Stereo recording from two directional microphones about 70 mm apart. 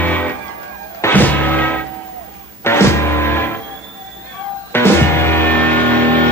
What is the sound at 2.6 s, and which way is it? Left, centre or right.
Music, left.